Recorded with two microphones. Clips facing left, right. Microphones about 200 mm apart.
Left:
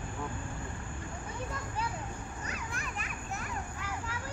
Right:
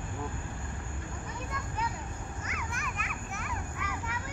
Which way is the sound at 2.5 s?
35° left (ahead or behind).